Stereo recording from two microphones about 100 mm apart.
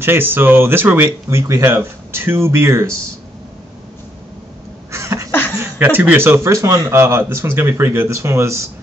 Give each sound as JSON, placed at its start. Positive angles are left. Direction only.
{"t": 0.0, "sound": "speech", "side_deg": -20}
{"t": 4.9, "sound": "cough", "side_deg": -30}
{"t": 5.3, "sound": "a sound", "side_deg": 20}
{"t": 5.6, "sound": "speech", "side_deg": -20}